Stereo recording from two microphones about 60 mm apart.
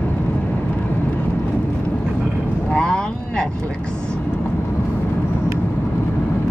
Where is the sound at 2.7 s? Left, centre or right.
Centre.